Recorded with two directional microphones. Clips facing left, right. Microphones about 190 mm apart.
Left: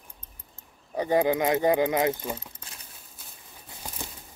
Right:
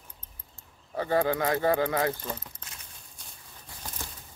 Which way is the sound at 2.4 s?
30° left (ahead or behind).